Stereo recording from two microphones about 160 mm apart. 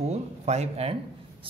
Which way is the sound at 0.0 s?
45° right (ahead or behind).